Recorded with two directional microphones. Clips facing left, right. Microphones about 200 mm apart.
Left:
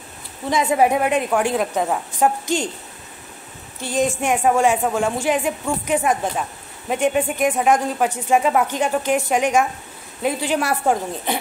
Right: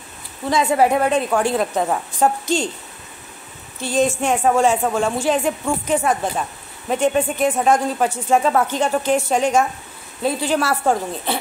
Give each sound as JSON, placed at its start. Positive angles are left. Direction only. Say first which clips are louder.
{"t": 0.5, "sound": "speech", "louder": "right 1 dB", "side_deg": 20}
{"t": 3.8, "sound": "speech", "louder": "right 2 dB", "side_deg": 15}